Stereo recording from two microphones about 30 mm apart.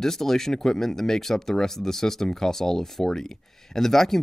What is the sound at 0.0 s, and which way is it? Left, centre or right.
Speech, centre.